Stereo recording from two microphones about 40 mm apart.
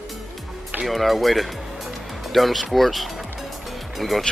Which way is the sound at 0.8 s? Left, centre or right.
Centre.